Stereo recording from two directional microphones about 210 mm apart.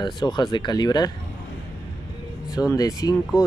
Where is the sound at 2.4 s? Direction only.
15° left (ahead or behind).